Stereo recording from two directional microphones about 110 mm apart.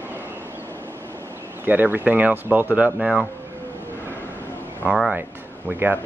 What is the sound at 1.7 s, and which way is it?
Speech, 15° right (ahead or behind).